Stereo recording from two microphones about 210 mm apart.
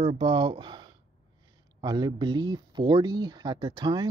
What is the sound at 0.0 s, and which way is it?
Speech, 25° right (ahead or behind).